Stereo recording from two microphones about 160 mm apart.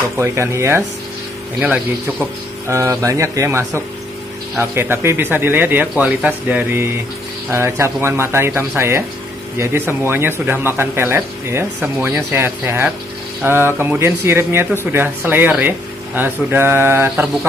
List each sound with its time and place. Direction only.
0.2 s speech: 15° right (ahead or behind)